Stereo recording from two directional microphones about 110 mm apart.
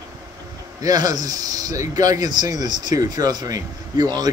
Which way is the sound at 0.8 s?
35° right (ahead or behind).